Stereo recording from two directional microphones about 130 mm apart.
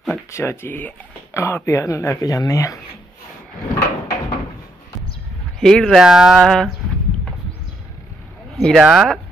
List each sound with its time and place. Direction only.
0.3 s speech: 20° left (ahead or behind)
5.6 s speech: 5° left (ahead or behind)
8.5 s speech: 5° left (ahead or behind)